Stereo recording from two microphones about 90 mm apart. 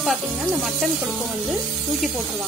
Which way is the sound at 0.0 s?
Centre (ahead or behind).